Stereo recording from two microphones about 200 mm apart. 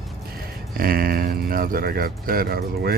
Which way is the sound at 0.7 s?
45° right (ahead or behind).